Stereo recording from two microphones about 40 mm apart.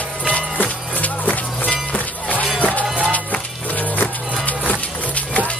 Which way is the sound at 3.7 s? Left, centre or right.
Left.